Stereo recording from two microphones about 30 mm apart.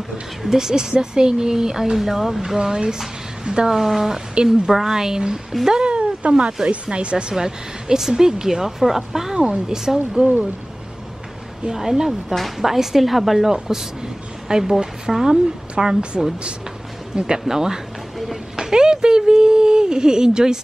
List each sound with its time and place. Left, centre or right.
0.5 s speech: centre
3.7 s speech: centre
5.7 s speech: right
7.3 s speech: centre
11.7 s speech: centre
13.5 s speech: centre
15.1 s speech: centre
15.7 s speech: right
17.3 s speech: centre